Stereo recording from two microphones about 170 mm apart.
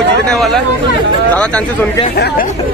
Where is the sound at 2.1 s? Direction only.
65° left (ahead or behind).